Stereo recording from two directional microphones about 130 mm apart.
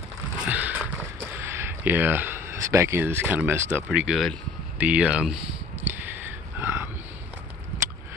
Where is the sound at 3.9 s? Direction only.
5° right (ahead or behind).